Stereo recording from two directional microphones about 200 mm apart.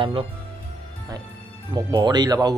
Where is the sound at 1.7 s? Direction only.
20° right (ahead or behind).